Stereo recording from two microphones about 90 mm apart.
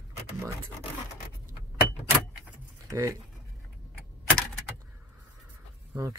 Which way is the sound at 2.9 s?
40° right (ahead or behind).